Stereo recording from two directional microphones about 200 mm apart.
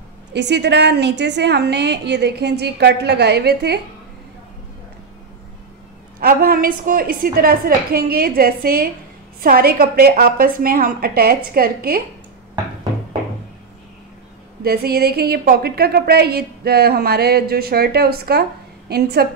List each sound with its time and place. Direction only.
0.3 s a woman's voice: 60° right (ahead or behind)
6.1 s speech: 45° right (ahead or behind)
14.6 s speech: 50° right (ahead or behind)